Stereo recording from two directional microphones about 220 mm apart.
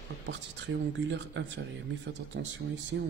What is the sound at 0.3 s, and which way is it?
Speech, 55° right (ahead or behind).